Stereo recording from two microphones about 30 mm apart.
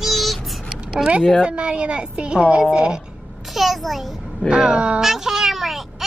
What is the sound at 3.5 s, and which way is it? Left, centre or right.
Speech, centre.